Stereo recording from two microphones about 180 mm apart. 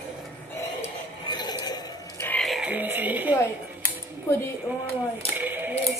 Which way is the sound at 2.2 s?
5° left (ahead or behind).